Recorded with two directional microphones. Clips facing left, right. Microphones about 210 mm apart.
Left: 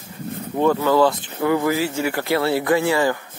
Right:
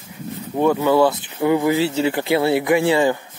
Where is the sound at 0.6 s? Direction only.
15° right (ahead or behind).